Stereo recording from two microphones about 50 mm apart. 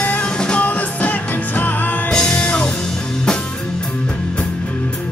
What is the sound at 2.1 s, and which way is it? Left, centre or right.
Music, centre.